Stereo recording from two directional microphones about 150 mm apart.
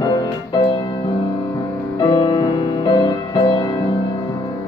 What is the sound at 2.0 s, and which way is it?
Music, 30° left (ahead or behind).